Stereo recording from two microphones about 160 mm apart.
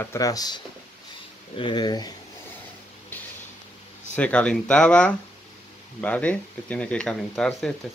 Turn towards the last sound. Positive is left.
turn(degrees=5)  # may be behind; listen again after turning